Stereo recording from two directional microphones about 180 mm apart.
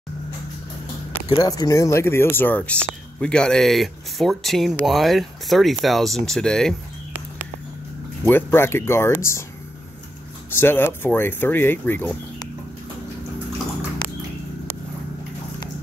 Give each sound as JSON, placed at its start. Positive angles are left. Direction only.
{"t": 1.3, "sound": "speech", "side_deg": 20}
{"t": 8.3, "sound": "speech", "side_deg": 10}
{"t": 10.5, "sound": "speech", "side_deg": 10}